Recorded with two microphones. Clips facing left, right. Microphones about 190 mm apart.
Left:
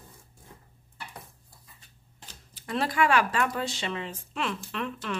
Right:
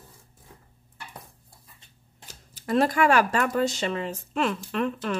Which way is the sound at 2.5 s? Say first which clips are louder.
Right 7 dB; 45° right (ahead or behind).